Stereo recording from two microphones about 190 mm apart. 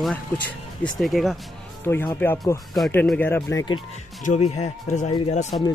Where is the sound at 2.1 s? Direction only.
15° left (ahead or behind).